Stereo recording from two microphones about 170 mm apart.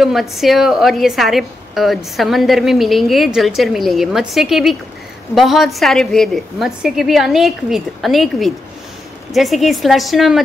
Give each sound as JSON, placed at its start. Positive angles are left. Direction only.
{"t": 0.0, "sound": "a woman's voice", "side_deg": 0}